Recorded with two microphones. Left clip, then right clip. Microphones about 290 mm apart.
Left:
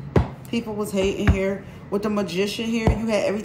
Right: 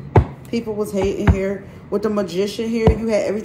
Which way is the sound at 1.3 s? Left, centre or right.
Centre.